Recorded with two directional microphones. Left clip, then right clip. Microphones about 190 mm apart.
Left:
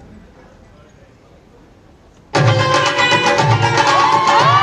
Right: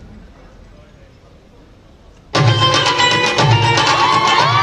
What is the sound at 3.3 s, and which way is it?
Music, 40° left (ahead or behind).